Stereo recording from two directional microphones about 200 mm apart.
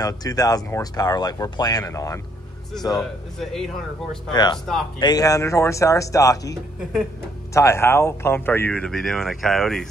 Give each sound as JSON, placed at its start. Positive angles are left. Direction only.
{"t": 0.0, "sound": "speech", "side_deg": 20}
{"t": 2.9, "sound": "speech", "side_deg": 0}
{"t": 4.3, "sound": "speech", "side_deg": 20}